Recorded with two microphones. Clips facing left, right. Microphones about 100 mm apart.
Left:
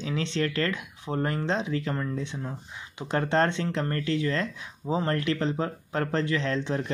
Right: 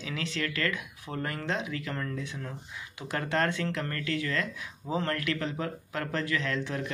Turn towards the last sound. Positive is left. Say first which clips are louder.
# left 4 dB
turn(degrees=30)  # may be behind; listen again after turning